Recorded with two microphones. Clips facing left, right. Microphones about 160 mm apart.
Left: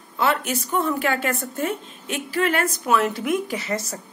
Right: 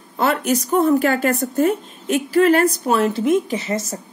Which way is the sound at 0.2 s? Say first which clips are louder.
Right 4 dB; 40° right (ahead or behind).